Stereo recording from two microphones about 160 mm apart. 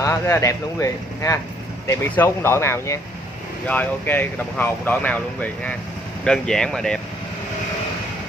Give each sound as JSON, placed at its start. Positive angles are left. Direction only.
{"t": 0.0, "sound": "speech", "side_deg": 20}